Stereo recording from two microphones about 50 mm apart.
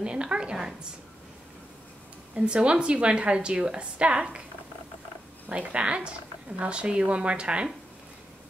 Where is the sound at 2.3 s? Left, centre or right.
Right.